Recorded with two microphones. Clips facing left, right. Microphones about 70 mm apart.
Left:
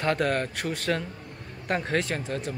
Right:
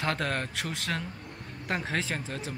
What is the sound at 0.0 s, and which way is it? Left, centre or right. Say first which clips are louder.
Speech: left 5 dB; centre.